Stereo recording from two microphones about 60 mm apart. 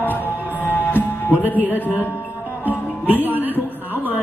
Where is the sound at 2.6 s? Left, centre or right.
Right.